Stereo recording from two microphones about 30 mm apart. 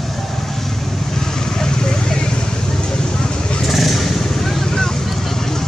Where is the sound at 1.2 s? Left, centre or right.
Centre.